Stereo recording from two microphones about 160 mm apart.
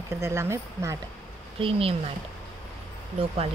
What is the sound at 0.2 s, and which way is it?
Speech, 15° right (ahead or behind).